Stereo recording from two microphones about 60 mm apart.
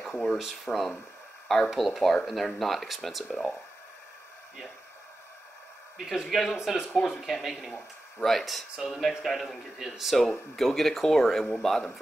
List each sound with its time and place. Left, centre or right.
0.7 s speech: centre
1.7 s a man's voice: centre
5.9 s a man's voice: centre